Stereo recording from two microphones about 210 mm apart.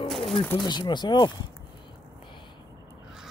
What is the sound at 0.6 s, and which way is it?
Speech, 20° left (ahead or behind).